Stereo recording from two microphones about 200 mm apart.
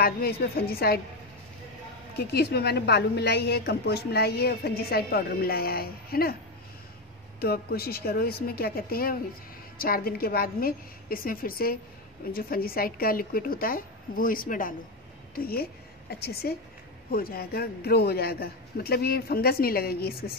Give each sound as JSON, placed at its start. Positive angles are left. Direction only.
{"t": 0.0, "sound": "a woman's voice", "side_deg": 50}
{"t": 2.1, "sound": "a woman's voice", "side_deg": 55}
{"t": 7.3, "sound": "a woman's voice", "side_deg": 50}